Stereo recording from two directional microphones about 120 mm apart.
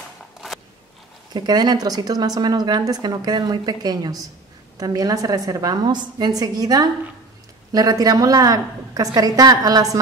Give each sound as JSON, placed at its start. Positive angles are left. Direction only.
{"t": 1.3, "sound": "a woman's voice", "side_deg": -35}